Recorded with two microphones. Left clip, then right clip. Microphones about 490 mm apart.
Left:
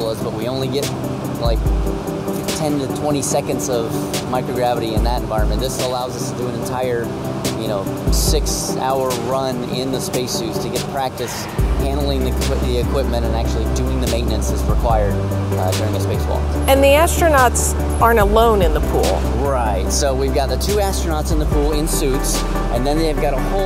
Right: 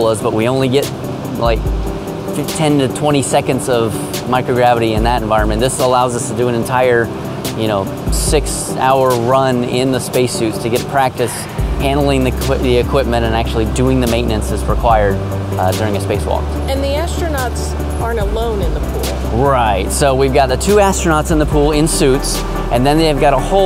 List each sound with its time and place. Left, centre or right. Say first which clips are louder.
0.0 s speech: right 8 dB; right
2.6 s speech: right 8 dB; right
6.7 s speech: right 9 dB; right
8.3 s speech: right 6 dB; right
11.9 s speech: right 9 dB; right
14.8 s speech: right 7 dB; right
16.6 s speech: left 11 dB; left
19.4 s speech: right 9 dB; right